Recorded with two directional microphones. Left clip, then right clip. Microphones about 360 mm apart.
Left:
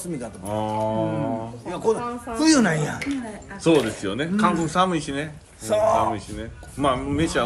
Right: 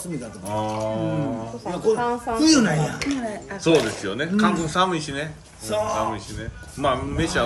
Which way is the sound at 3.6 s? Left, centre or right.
Centre.